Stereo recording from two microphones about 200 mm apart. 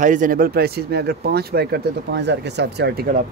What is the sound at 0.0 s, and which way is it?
Speech, 40° right (ahead or behind).